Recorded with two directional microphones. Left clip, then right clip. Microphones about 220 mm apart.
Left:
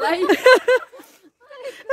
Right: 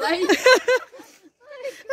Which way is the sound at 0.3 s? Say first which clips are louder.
Left 3 dB; 10° left (ahead or behind).